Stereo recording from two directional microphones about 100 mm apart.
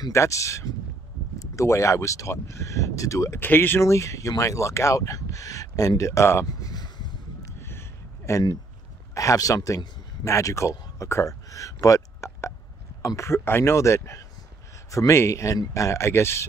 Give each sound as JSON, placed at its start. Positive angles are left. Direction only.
{"t": 0.0, "sound": "speech", "side_deg": 30}
{"t": 3.3, "sound": "speech", "side_deg": 20}
{"t": 7.5, "sound": "a sound", "side_deg": 25}
{"t": 8.3, "sound": "speech", "side_deg": 35}